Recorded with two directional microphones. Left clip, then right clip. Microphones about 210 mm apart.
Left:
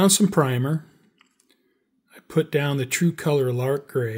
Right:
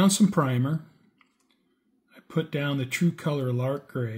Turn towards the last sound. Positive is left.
turn(degrees=50)  # may be behind; listen again after turning